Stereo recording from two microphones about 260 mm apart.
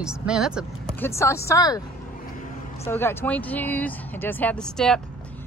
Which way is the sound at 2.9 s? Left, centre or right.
Centre.